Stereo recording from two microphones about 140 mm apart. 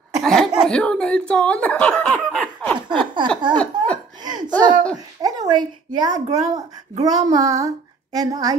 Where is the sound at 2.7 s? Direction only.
35° right (ahead or behind).